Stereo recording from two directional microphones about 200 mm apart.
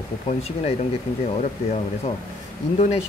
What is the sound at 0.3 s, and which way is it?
Speech, 35° left (ahead or behind).